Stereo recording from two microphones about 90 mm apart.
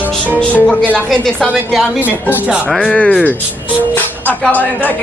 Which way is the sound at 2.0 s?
20° right (ahead or behind).